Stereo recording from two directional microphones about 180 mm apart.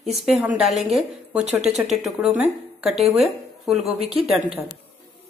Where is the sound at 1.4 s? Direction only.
40° right (ahead or behind).